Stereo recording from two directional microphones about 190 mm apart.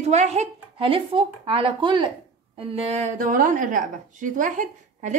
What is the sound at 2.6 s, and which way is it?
A woman's voice, 35° right (ahead or behind).